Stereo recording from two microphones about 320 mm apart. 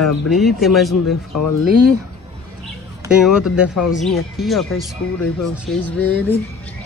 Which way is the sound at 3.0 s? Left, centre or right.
Centre.